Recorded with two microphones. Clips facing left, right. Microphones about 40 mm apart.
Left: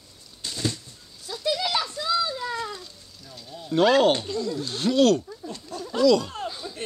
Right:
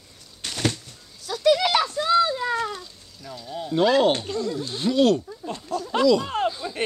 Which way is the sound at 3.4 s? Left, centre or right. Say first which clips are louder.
Right 9 dB; right.